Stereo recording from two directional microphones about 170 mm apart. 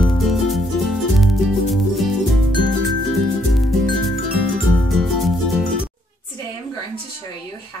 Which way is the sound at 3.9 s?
Centre (ahead or behind).